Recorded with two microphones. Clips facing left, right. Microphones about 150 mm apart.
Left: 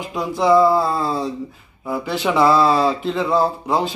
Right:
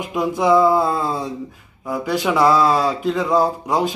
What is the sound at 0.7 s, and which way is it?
Speech, 15° right (ahead or behind).